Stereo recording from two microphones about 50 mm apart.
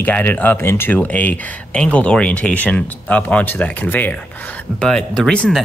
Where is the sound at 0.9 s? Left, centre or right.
Left.